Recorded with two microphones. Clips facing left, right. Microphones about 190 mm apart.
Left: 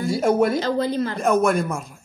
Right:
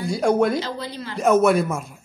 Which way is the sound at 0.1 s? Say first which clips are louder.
Even; 5° left (ahead or behind).